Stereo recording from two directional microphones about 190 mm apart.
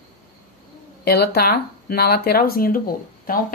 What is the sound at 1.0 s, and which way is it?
Speech, 55° left (ahead or behind).